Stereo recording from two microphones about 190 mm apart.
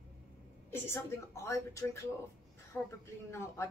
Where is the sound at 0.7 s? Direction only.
15° left (ahead or behind).